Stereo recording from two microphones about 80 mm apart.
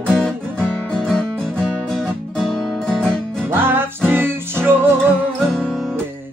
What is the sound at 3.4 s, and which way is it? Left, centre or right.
Music, right.